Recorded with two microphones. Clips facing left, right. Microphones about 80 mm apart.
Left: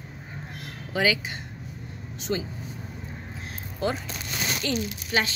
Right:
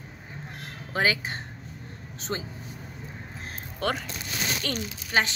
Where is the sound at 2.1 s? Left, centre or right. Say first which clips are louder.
Left 4 dB; right.